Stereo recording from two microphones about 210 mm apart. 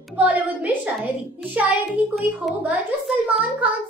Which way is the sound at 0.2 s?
5° right (ahead or behind).